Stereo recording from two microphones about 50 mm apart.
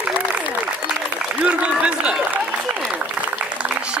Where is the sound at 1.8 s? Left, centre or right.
Centre.